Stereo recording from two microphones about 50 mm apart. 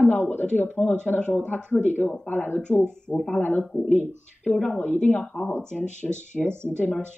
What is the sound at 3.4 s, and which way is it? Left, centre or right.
Speech, left.